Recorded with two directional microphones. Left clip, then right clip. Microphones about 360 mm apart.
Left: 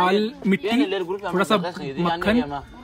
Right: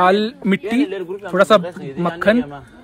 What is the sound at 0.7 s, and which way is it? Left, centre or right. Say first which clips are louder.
Speech: right 2 dB; centre.